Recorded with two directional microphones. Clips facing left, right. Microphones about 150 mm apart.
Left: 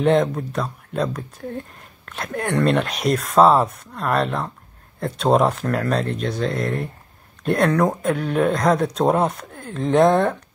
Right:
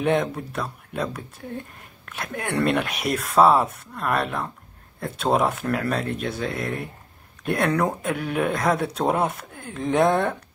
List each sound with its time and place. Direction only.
0.0 s speech: 5° right (ahead or behind)